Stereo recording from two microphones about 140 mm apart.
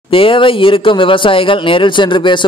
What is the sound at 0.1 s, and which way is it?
A man's voice, 40° left (ahead or behind).